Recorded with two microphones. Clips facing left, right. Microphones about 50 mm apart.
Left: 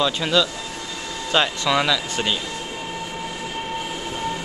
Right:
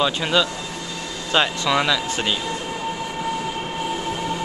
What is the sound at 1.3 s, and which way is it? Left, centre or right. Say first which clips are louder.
Speech: even; centre.